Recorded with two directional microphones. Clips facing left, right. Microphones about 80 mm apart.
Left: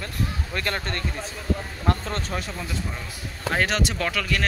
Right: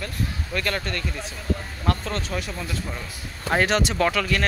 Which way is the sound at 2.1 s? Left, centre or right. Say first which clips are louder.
Right 1 dB; left.